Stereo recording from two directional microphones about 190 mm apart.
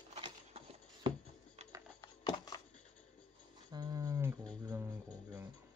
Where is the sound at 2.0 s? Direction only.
20° left (ahead or behind).